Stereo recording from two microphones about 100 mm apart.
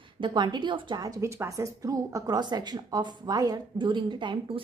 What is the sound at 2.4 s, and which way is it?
A woman's voice, 45° right (ahead or behind).